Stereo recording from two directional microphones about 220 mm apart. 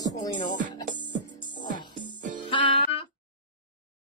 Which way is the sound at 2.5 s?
25° left (ahead or behind).